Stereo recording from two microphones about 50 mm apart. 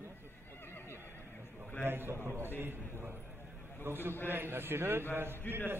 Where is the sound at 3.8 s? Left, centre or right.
Right.